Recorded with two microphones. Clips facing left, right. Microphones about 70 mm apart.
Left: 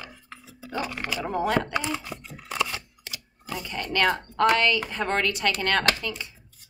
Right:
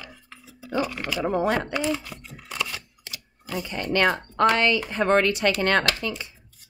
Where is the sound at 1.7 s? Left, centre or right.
Left.